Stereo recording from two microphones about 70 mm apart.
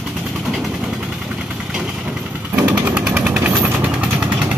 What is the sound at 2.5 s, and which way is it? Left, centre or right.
Jackhammer, right.